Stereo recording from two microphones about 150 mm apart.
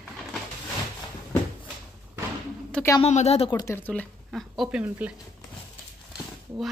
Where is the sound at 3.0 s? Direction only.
45° left (ahead or behind).